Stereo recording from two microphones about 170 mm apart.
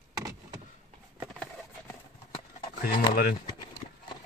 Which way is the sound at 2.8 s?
60° left (ahead or behind).